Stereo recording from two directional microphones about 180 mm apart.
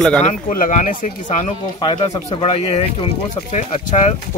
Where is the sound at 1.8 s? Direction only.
25° left (ahead or behind); by 4.1 s 40° left (ahead or behind).